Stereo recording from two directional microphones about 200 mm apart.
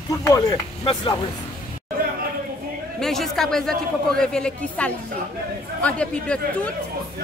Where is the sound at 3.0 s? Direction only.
Centre (ahead or behind).